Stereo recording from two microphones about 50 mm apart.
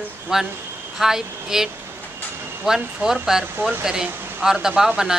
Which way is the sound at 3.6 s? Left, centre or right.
Right.